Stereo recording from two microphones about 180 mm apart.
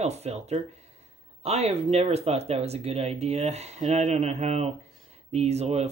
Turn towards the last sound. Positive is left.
turn(degrees=-35)  # may be behind; listen again after turning